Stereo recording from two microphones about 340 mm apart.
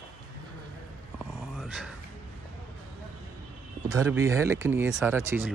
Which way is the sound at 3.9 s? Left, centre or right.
Centre.